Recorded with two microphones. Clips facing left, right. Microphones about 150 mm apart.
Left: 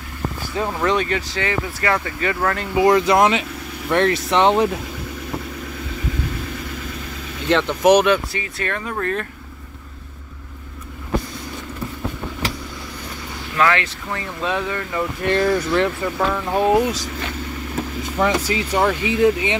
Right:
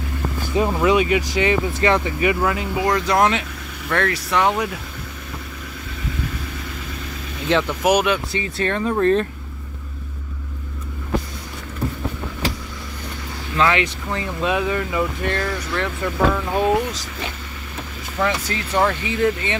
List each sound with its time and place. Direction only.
0.7 s speech: 10° right (ahead or behind)
2.8 s speech: 5° left (ahead or behind)
3.9 s speech: 20° left (ahead or behind)
7.4 s speech: 5° right (ahead or behind)
8.3 s speech: 25° right (ahead or behind)
13.6 s speech: 20° right (ahead or behind)
15.3 s speech: 20° left (ahead or behind)
16.0 s speech: centre (ahead or behind)
18.2 s speech: 10° left (ahead or behind)